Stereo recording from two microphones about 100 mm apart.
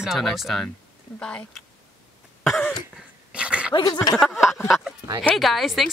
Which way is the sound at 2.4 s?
5° left (ahead or behind).